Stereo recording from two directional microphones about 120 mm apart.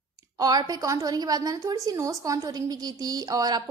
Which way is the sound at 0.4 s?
30° right (ahead or behind).